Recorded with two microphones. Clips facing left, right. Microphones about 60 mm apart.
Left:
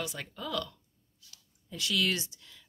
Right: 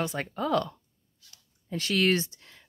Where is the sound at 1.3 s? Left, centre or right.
Right.